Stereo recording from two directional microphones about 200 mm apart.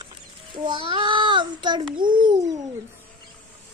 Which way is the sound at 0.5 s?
25° right (ahead or behind).